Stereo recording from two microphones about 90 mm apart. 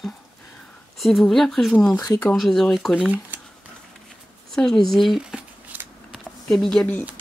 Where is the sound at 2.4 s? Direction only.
5° left (ahead or behind).